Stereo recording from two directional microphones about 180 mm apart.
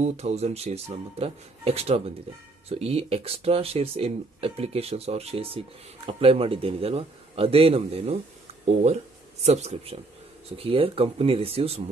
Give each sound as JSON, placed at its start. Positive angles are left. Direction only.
{"t": 0.0, "sound": "speech", "side_deg": -35}
{"t": 9.4, "sound": "speech", "side_deg": -35}